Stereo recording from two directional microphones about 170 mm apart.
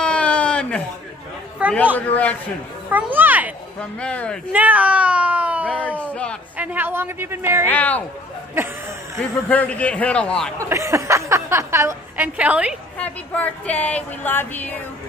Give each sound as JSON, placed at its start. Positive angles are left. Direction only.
{"t": 0.0, "sound": "a sound", "side_deg": 5}
{"t": 2.0, "sound": "speech", "side_deg": 10}
{"t": 2.9, "sound": "a woman's voice", "side_deg": -10}
{"t": 4.0, "sound": "speech", "side_deg": 5}
{"t": 4.5, "sound": "a woman's voice", "side_deg": -10}
{"t": 5.7, "sound": "speech", "side_deg": 10}
{"t": 6.5, "sound": "a woman's voice", "side_deg": -10}
{"t": 7.6, "sound": "speech", "side_deg": 10}
{"t": 8.6, "sound": "a woman's voice", "side_deg": -15}
{"t": 9.5, "sound": "speech", "side_deg": 10}
{"t": 10.7, "sound": "a woman's voice", "side_deg": -20}
{"t": 13.0, "sound": "speech", "side_deg": 10}